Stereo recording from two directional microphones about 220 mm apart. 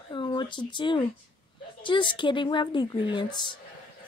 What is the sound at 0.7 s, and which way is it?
A woman's voice, 20° left (ahead or behind).